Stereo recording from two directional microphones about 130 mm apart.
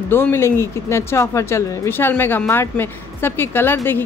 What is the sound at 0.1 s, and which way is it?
Speech, 20° left (ahead or behind).